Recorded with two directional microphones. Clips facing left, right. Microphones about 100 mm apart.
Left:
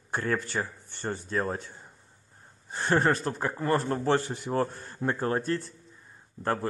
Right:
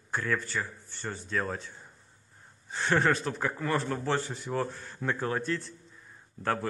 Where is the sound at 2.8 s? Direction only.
40° left (ahead or behind).